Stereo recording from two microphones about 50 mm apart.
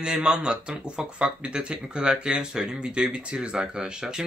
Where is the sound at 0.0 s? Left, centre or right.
Centre.